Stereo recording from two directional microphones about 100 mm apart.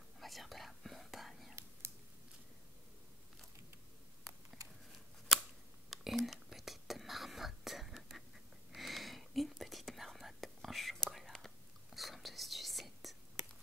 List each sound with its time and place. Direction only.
0.2 s whispering: centre (ahead or behind)
1.5 s whispering: 25° right (ahead or behind)
5.9 s whispering: centre (ahead or behind)